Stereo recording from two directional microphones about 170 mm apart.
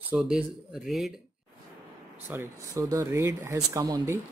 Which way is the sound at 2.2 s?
15° right (ahead or behind).